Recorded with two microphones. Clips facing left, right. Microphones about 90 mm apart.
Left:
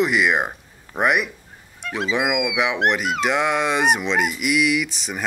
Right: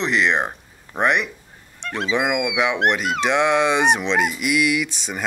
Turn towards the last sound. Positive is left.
turn(degrees=0)  # may be behind; listen again after turning